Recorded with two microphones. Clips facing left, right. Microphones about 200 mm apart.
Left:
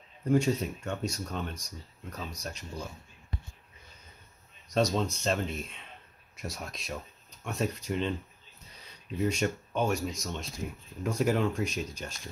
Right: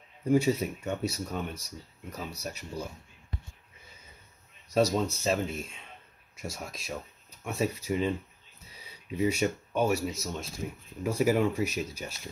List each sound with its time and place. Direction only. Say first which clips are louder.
0.3 s speech: right 1 dB; 5° right (ahead or behind)
4.7 s speech: right 2 dB; 5° right (ahead or behind)